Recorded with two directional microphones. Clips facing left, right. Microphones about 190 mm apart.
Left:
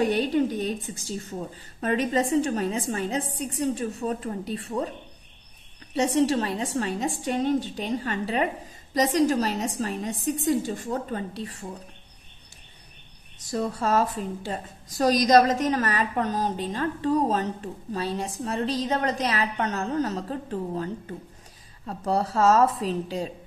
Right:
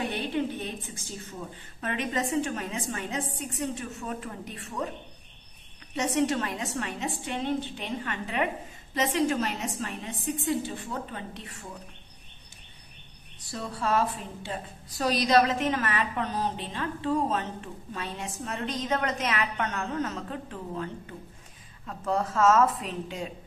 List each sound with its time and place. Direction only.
0.0 s a woman's voice: 40° left (ahead or behind)
5.9 s a woman's voice: 30° left (ahead or behind)
13.4 s a woman's voice: 45° left (ahead or behind)